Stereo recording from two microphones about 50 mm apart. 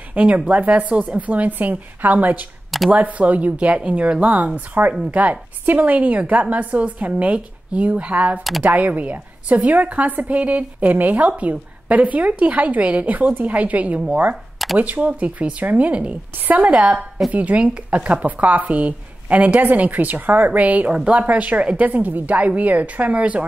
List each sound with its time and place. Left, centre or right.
0.1 s a woman's voice: right
14.3 s a sound: centre
14.8 s a woman's voice: right